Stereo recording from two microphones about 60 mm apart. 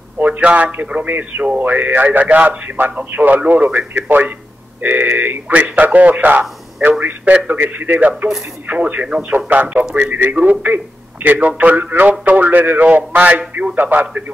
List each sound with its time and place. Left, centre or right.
0.2 s a man's voice: right